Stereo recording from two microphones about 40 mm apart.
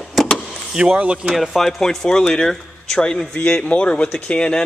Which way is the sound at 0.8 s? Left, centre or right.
Right.